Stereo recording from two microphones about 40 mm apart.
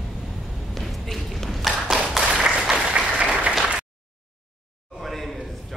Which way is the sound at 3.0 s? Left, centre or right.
Right.